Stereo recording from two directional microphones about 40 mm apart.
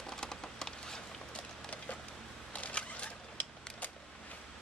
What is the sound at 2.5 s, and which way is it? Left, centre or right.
Single-lens reflex camera, left.